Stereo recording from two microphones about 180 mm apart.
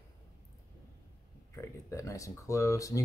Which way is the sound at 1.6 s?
15° left (ahead or behind).